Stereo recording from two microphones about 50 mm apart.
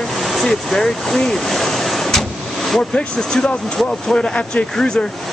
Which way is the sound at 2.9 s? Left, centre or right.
Centre.